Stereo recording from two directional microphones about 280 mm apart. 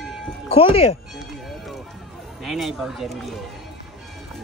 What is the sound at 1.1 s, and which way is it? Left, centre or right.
Music, centre.